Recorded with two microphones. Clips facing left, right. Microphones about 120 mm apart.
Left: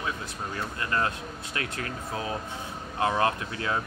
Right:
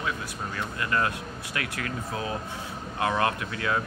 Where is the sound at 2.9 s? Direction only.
25° left (ahead or behind).